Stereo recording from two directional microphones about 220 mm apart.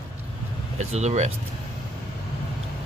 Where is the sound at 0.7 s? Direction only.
30° right (ahead or behind).